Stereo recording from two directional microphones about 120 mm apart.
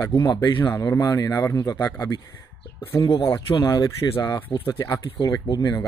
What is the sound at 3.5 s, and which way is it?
Speech, 35° left (ahead or behind).